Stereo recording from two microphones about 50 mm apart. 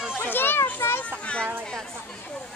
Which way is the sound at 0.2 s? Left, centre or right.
Left.